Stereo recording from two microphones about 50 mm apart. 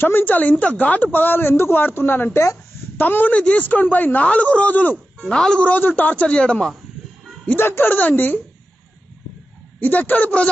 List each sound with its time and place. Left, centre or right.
0.0 s a man's voice: left
4.2 s speech: left
5.3 s speech: centre
5.7 s a man's voice: left
6.2 s speech: left
7.5 s a man's voice: left
9.8 s a man's voice: left